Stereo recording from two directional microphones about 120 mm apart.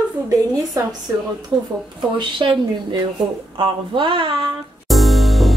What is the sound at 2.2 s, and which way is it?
Speech, 45° right (ahead or behind).